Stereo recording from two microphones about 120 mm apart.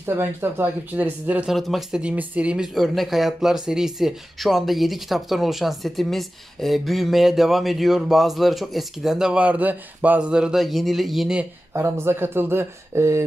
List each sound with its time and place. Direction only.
0.0 s speech: 20° right (ahead or behind)
1.5 s speech: centre (ahead or behind)
11.7 s speech: 20° right (ahead or behind)